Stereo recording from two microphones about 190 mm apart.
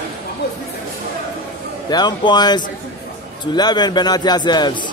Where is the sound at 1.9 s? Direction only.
20° left (ahead or behind).